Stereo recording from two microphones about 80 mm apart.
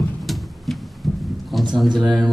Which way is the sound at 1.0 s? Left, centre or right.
Centre.